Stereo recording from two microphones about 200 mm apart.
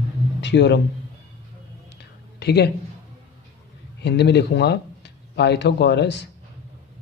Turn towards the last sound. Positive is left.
turn(degrees=60)  # may be behind; listen again after turning